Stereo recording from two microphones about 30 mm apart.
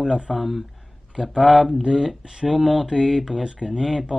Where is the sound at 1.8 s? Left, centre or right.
Centre.